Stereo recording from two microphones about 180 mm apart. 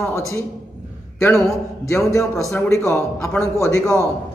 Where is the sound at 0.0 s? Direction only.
15° left (ahead or behind).